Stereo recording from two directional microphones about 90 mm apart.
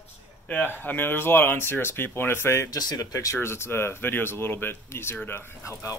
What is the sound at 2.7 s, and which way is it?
A man's voice, 45° left (ahead or behind).